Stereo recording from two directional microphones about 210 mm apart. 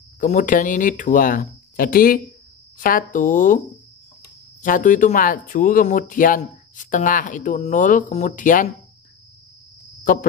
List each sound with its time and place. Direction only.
0.2 s speech: 35° left (ahead or behind)